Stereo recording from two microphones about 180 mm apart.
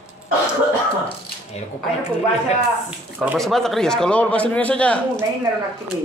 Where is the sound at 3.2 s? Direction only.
Centre (ahead or behind).